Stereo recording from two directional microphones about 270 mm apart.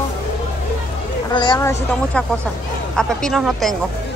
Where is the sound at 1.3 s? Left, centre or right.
Centre.